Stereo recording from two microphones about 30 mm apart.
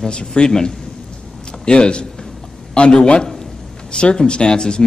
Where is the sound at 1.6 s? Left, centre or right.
Left.